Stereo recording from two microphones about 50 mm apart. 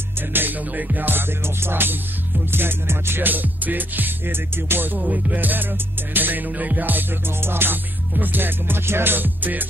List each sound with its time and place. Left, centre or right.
0.3 s music: right
5.0 s music: right